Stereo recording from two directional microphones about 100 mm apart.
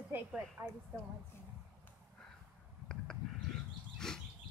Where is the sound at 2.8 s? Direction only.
5° left (ahead or behind).